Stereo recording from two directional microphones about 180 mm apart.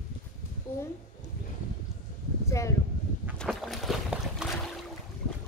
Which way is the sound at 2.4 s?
15° left (ahead or behind).